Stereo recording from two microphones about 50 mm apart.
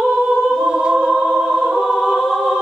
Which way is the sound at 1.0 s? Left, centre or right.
Centre.